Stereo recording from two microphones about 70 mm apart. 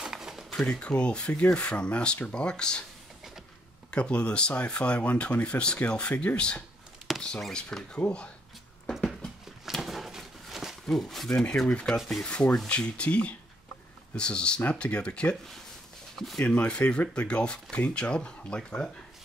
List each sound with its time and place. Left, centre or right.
0.0 s a sound: centre
0.5 s speech: centre
3.9 s speech: centre
9.7 s a sound: centre
12.0 s rub: centre
12.3 s speech: centre
16.2 s rub: centre
16.4 s speech: centre